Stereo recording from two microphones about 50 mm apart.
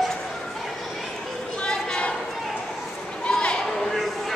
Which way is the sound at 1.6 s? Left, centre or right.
Centre.